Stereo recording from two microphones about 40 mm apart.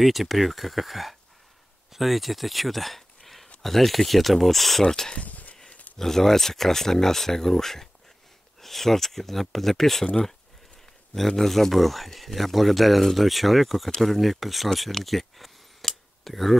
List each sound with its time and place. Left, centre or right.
0.0 s speech: centre
5.2 s a sound: left
5.9 s speech: centre
11.1 s speech: centre